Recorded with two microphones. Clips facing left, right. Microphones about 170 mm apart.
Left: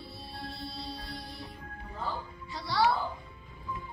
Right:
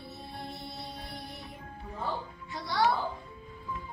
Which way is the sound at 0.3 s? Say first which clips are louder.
Left 1 dB; 20° right (ahead or behind).